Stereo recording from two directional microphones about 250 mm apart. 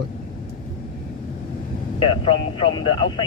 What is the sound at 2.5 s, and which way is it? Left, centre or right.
Speech, centre.